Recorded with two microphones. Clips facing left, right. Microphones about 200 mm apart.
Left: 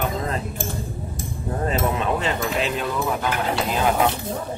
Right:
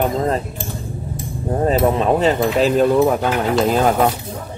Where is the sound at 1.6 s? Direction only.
35° right (ahead or behind).